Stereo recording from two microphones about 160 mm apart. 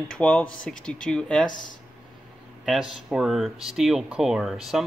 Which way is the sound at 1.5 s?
55° left (ahead or behind).